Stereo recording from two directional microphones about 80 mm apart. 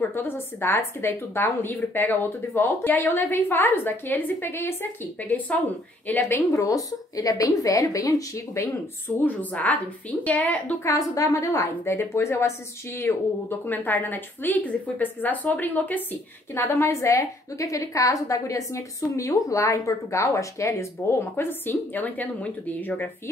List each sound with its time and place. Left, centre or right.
0.1 s a woman's voice: left
5.5 s a woman's voice: centre; by 8.7 s left
9.2 s a woman's voice: centre
10.8 s a woman's voice: left
16.5 s a woman's voice: left
21.2 s a woman's voice: left